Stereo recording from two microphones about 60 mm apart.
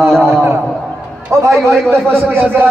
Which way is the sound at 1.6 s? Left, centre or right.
Centre.